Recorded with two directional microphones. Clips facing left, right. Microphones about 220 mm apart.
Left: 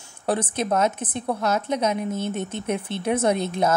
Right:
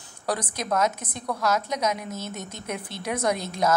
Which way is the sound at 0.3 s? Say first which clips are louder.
Left 4 dB; 30° left (ahead or behind).